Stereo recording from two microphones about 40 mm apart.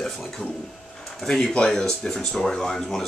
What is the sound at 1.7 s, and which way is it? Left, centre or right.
Speech, centre.